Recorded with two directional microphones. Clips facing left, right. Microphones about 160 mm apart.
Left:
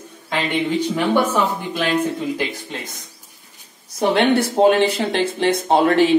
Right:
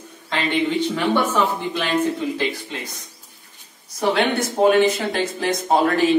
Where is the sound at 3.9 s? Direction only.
30° left (ahead or behind).